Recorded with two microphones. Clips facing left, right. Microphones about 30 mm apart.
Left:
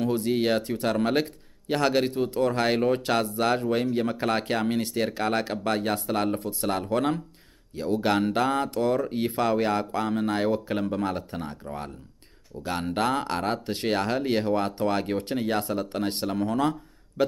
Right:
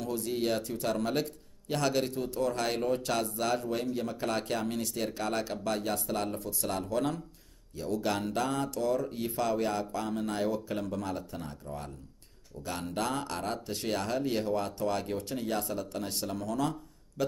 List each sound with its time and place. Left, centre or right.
0.0 s a man's voice: left